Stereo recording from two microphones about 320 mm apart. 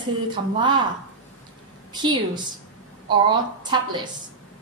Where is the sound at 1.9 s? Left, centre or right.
Centre.